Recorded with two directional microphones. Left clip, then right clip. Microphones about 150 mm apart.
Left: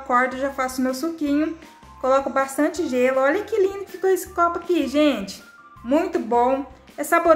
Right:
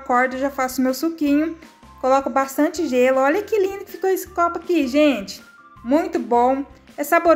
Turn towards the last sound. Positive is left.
turn(degrees=-30)  # may be behind; listen again after turning